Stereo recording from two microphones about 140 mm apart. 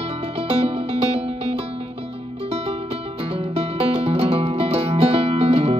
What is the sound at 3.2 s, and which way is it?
Music, 45° right (ahead or behind).